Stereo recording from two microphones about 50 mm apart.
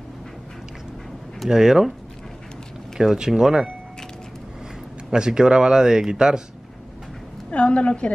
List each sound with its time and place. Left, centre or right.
1.5 s speech: centre
3.0 s speech: centre
5.1 s speech: centre
7.5 s a woman's voice: left